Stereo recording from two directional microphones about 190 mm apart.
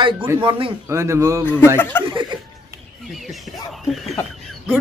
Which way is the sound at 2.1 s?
25° right (ahead or behind).